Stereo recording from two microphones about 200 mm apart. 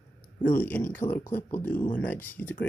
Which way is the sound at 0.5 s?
10° left (ahead or behind).